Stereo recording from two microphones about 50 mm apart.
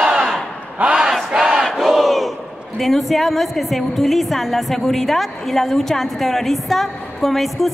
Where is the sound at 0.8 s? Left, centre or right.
Right.